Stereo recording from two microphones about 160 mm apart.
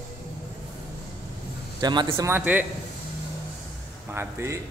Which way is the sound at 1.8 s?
30° right (ahead or behind).